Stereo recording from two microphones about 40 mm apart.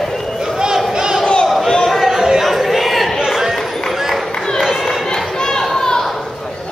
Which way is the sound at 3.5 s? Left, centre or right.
Centre.